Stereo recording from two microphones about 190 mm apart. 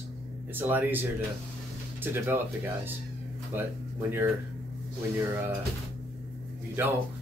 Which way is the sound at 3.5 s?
10° right (ahead or behind).